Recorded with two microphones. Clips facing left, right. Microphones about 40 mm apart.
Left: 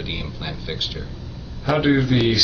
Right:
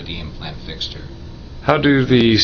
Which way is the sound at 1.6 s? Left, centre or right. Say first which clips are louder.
Right 4 dB; right.